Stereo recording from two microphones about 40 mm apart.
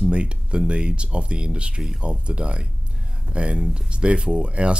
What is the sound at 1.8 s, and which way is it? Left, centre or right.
Speech, centre.